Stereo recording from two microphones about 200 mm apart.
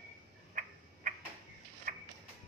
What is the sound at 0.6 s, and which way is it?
Tick-tock, 40° right (ahead or behind).